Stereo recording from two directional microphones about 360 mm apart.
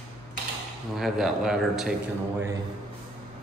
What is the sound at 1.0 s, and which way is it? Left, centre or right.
Speech, centre.